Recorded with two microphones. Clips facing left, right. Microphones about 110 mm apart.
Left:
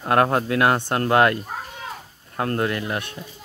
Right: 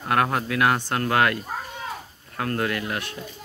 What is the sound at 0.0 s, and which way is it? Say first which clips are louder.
Speech: left 4 dB; 30° left (ahead or behind).